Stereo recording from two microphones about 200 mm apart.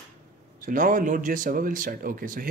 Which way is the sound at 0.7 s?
40° right (ahead or behind).